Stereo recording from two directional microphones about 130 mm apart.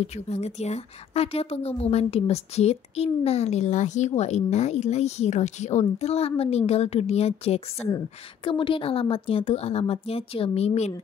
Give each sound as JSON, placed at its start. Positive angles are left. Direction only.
{"t": 0.0, "sound": "a woman's voice", "side_deg": 55}
{"t": 8.5, "sound": "a woman's voice", "side_deg": 40}